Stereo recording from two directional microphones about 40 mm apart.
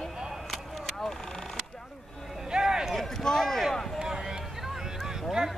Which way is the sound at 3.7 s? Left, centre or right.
Centre.